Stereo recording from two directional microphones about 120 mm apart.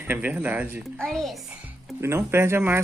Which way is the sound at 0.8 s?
5° left (ahead or behind).